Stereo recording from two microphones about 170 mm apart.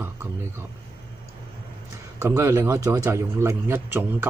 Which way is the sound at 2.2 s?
15° right (ahead or behind).